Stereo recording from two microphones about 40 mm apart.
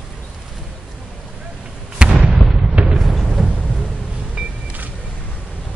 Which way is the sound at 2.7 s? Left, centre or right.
Right.